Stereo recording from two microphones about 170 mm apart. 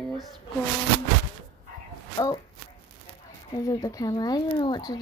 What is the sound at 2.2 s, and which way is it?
Speech, 15° left (ahead or behind).